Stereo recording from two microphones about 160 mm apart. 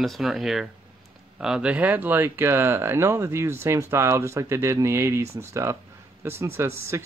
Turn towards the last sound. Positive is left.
turn(degrees=-15)  # may be behind; listen again after turning